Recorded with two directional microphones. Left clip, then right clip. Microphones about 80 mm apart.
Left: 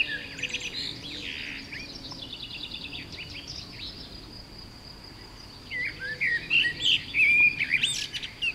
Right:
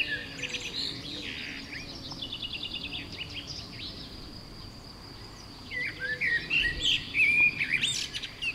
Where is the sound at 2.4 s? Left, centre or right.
Centre.